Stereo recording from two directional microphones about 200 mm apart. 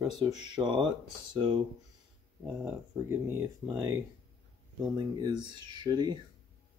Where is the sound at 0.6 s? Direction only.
25° right (ahead or behind).